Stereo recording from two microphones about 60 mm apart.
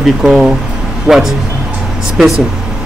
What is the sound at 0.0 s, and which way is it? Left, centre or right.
Speech, centre.